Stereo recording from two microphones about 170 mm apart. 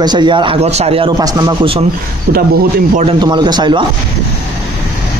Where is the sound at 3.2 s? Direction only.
25° right (ahead or behind).